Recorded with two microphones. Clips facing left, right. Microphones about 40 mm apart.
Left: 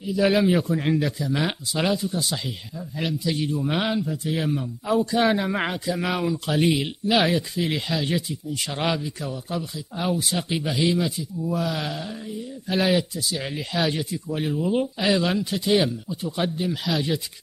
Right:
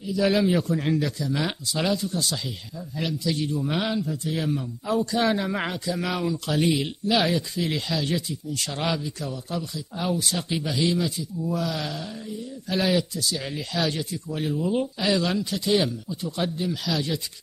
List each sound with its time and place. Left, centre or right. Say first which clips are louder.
0.0 s speech: left 2 dB; centre